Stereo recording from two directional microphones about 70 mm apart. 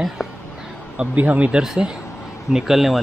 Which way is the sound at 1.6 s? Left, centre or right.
Centre.